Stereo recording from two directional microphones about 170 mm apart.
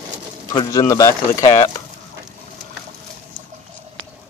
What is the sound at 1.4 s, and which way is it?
Speech, 35° left (ahead or behind).